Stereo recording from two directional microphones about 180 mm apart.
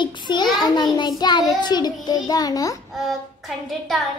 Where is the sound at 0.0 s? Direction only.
25° left (ahead or behind).